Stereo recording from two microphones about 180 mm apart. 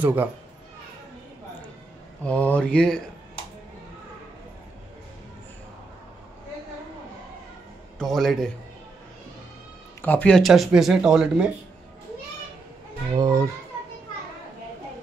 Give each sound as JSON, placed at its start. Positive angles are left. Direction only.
{"t": 0.0, "sound": "speech", "side_deg": -10}
{"t": 2.2, "sound": "speech", "side_deg": 10}
{"t": 8.0, "sound": "speech", "side_deg": 0}
{"t": 10.0, "sound": "speech", "side_deg": 5}
{"t": 13.1, "sound": "speech", "side_deg": -20}